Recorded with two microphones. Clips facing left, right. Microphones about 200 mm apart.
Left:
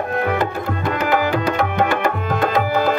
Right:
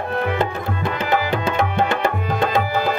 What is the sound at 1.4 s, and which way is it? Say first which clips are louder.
Music: left 1 dB; 25° right (ahead or behind).